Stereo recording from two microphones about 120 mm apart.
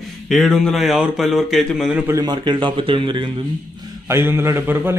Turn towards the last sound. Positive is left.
turn(degrees=-20)  # may be behind; listen again after turning